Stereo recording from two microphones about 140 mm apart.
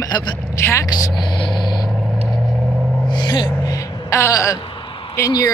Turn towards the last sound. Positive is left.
turn(degrees=25)  # may be behind; listen again after turning